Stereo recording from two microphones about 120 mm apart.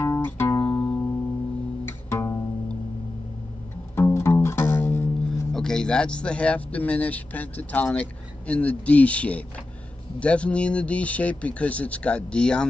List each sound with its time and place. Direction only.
0.0 s music: 20° left (ahead or behind)
3.9 s music: 20° left (ahead or behind)
5.5 s speech: 5° left (ahead or behind)